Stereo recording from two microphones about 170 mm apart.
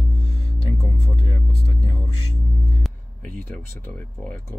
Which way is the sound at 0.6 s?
30° left (ahead or behind).